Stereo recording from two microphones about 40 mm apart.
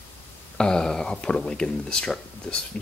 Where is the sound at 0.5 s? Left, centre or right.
Centre.